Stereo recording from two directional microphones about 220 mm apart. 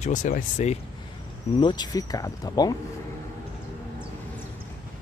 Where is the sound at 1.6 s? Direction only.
20° left (ahead or behind).